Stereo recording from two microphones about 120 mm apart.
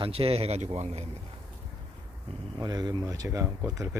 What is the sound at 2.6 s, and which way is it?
Speech, 35° right (ahead or behind).